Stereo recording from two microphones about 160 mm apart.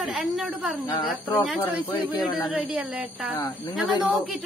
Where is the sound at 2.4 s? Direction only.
5° right (ahead or behind).